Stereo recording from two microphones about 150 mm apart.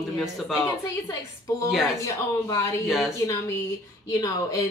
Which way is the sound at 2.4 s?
25° left (ahead or behind).